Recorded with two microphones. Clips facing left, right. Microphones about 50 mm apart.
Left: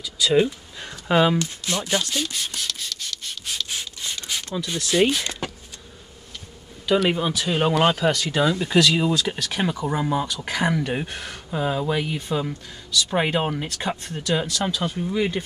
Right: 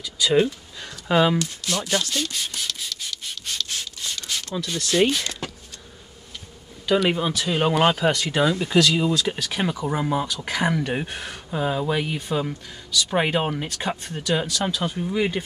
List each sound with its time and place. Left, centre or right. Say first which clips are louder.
0.0 s speech: even; centre
0.4 s speech: even; centre
1.1 s speech: even; centre
1.4 s speech: even; left
2.0 s rub: even; centre
3.3 s rub: even; centre
5.2 s speech: left 1 dB; left
7.1 s speech: even; centre
8.1 s speech: even; right
8.4 s speech: even; centre
8.6 s speech: even; centre